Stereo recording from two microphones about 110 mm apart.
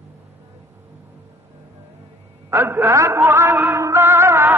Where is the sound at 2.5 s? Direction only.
20° right (ahead or behind).